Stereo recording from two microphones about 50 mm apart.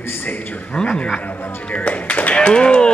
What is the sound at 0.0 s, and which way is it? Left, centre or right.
Speech, left.